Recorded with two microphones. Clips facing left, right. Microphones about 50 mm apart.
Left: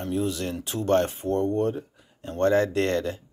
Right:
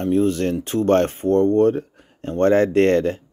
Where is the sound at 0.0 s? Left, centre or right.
Right.